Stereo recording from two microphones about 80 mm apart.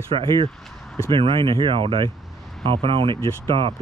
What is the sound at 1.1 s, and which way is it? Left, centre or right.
Speech, right.